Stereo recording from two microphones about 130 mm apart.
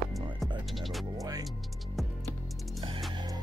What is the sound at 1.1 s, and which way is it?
Speech, 30° right (ahead or behind).